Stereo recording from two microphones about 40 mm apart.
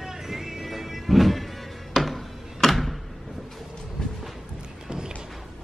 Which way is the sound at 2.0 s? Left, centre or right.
Centre.